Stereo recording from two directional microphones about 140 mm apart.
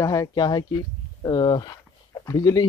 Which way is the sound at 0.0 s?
25° left (ahead or behind).